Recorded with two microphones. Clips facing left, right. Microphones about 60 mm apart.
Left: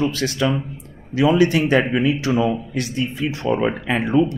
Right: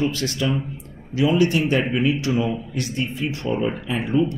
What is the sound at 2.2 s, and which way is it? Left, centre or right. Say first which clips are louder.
Speech: left 3 dB; left.